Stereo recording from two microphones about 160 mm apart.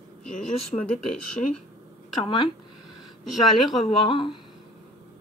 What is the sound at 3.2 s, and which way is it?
Speech, centre (ahead or behind).